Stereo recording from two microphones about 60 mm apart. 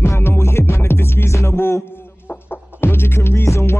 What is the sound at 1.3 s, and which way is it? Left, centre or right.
Music, left.